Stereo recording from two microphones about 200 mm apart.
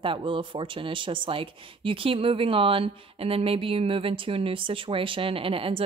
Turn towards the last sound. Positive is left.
turn(degrees=-30)  # may be behind; listen again after turning